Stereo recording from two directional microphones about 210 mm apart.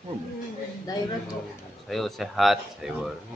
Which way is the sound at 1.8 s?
Centre (ahead or behind).